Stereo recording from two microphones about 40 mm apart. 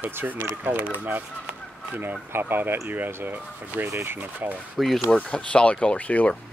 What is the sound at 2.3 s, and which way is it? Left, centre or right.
Speech, right.